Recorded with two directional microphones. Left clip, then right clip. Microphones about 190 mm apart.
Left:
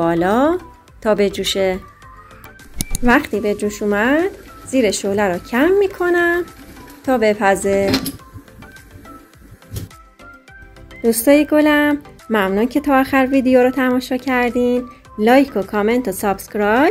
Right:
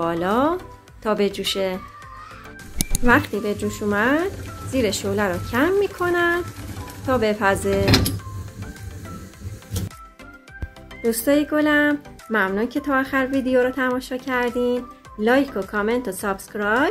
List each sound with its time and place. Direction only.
0.0 s speech: 15° left (ahead or behind)
3.1 s speech: 15° left (ahead or behind)
11.1 s speech: 20° left (ahead or behind)